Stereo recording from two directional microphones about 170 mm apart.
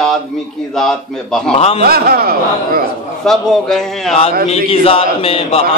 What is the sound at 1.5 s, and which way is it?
Speech, 35° left (ahead or behind).